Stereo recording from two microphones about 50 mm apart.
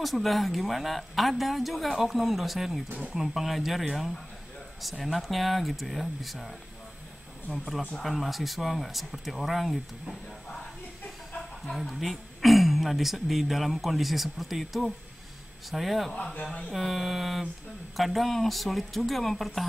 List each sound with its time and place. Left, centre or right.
0.0 s speech: centre
2.9 s speech: right
3.2 s speech: centre
7.5 s speech: centre
11.6 s speech: centre